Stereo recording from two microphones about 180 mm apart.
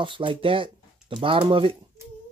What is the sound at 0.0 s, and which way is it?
Speech, 25° right (ahead or behind).